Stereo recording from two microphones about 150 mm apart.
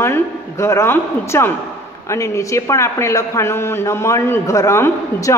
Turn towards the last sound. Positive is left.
turn(degrees=20)  # may be behind; listen again after turning